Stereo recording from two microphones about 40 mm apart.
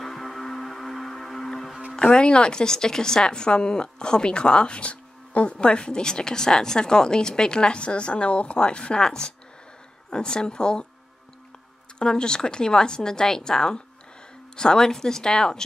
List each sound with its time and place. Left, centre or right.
0.0 s music: centre
2.0 s a woman's voice: left
12.0 s a woman's voice: centre